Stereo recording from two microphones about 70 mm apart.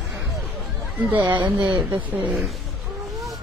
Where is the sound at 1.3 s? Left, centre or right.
Right.